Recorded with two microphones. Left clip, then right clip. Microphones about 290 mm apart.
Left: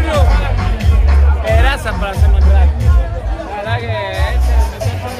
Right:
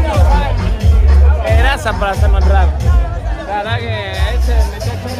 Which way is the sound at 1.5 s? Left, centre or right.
Centre.